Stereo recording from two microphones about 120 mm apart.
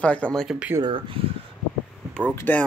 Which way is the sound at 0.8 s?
45° right (ahead or behind).